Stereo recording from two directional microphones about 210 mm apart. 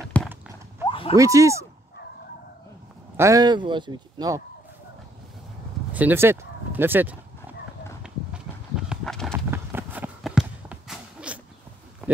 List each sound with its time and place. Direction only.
0.2 s a sound: 5° left (ahead or behind)
0.8 s dog: 25° left (ahead or behind)
1.1 s speech: 15° right (ahead or behind)
3.2 s speech: 15° right (ahead or behind)
5.9 s speech: 10° right (ahead or behind)
8.0 s horse: 5° right (ahead or behind)
9.5 s a sound: 10° right (ahead or behind)